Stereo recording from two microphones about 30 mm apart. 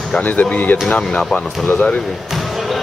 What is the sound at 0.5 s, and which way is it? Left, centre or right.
Speech, left.